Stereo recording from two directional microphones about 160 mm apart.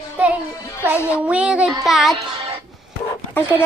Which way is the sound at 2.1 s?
35° right (ahead or behind).